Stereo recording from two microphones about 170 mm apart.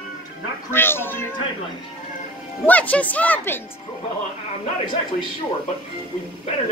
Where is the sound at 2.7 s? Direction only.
10° left (ahead or behind).